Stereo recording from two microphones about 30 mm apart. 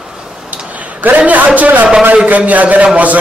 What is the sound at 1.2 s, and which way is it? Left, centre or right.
A man's voice, right.